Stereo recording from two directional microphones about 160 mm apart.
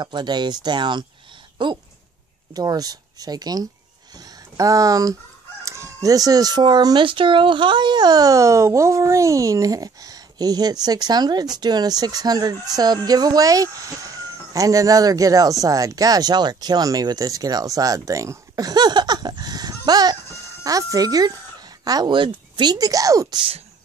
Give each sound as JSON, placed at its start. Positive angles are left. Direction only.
{"t": 0.0, "sound": "speech", "side_deg": -25}